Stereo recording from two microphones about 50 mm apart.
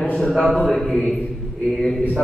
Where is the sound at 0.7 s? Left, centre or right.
Centre.